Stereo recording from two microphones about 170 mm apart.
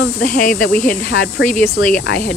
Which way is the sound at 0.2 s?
55° left (ahead or behind).